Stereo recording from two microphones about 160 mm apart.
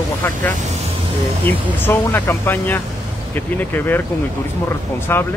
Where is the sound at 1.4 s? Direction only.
10° left (ahead or behind).